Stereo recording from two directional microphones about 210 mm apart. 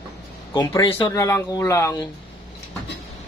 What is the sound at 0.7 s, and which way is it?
Speech, 25° left (ahead or behind).